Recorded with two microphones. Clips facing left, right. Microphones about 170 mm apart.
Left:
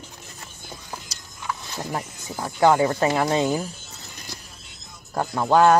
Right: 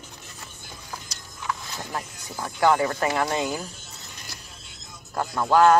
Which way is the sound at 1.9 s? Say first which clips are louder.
Left 4 dB; 20° left (ahead or behind).